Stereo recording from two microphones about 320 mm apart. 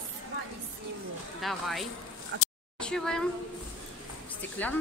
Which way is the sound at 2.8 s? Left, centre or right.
Centre.